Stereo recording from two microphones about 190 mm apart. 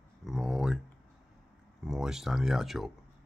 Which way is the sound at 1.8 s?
5° right (ahead or behind).